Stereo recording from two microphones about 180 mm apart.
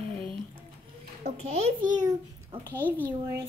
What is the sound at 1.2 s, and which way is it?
Speech, 35° right (ahead or behind).